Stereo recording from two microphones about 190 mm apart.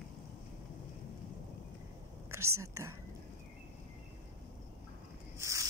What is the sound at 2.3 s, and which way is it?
Speech, 15° right (ahead or behind).